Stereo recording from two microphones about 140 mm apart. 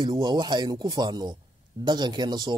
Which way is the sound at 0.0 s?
35° right (ahead or behind).